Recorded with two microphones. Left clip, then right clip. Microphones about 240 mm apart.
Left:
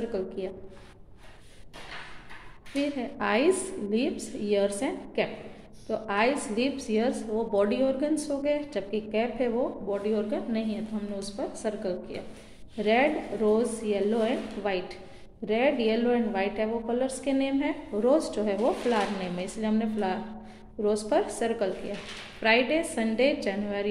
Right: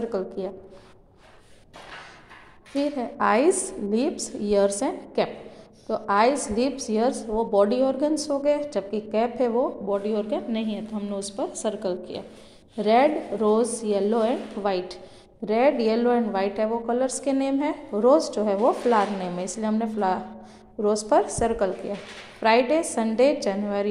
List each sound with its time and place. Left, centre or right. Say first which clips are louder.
0.1 s a woman's voice: right 4 dB; centre
2.7 s a woman's voice: right 4 dB; centre